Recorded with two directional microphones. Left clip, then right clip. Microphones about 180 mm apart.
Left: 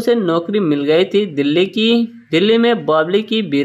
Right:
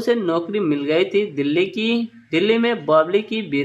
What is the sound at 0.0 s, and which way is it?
Speech, 25° left (ahead or behind).